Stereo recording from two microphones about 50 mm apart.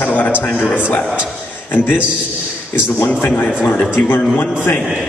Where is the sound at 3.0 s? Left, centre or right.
Left.